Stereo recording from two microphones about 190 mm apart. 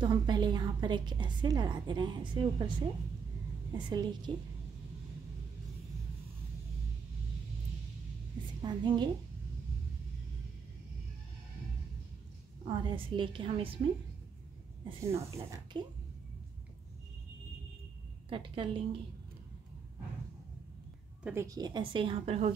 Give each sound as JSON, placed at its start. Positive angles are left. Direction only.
{"t": 0.0, "sound": "a woman's voice", "side_deg": -25}
{"t": 8.6, "sound": "a woman's voice", "side_deg": -25}
{"t": 12.6, "sound": "a woman's voice", "side_deg": -25}
{"t": 14.9, "sound": "a woman's voice", "side_deg": -30}
{"t": 15.3, "sound": "speech", "side_deg": -15}
{"t": 18.3, "sound": "a woman's voice", "side_deg": -25}
{"t": 21.2, "sound": "a woman's voice", "side_deg": -10}